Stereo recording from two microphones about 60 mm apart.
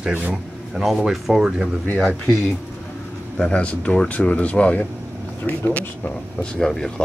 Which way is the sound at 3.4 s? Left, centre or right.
Centre.